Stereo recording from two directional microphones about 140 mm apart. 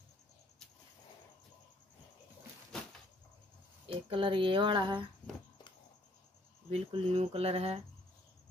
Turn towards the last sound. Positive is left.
turn(degrees=-45)  # may be behind; listen again after turning